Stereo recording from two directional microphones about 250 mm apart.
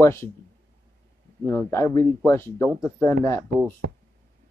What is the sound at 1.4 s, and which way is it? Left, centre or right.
A man's voice, centre.